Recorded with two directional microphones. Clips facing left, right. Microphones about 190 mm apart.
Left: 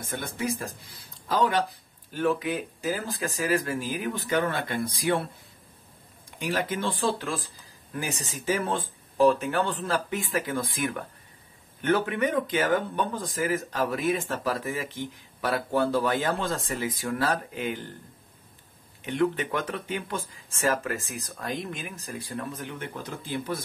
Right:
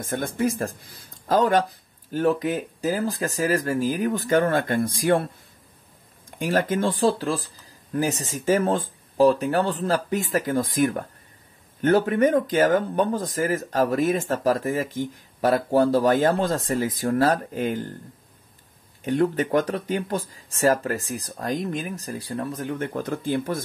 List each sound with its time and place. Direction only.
0.0 s speech: 45° right (ahead or behind)
6.3 s speech: 50° right (ahead or behind)
19.0 s speech: 40° right (ahead or behind)